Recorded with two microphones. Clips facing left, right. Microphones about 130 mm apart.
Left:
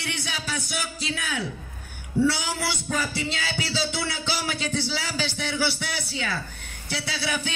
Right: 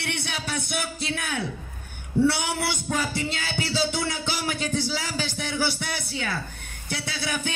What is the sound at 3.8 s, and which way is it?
A man's voice, 50° right (ahead or behind).